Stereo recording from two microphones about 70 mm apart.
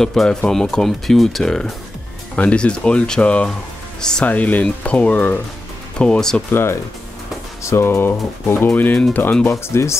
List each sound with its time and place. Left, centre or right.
0.0 s speech: centre
2.3 s speech: centre
4.3 s speech: left
6.5 s speech: left
9.5 s speech: left